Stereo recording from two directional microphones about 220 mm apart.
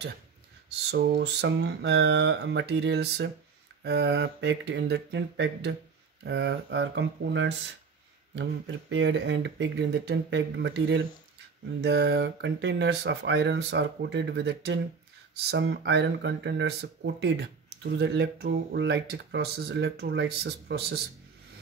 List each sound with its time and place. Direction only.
0.9 s speech: 50° right (ahead or behind)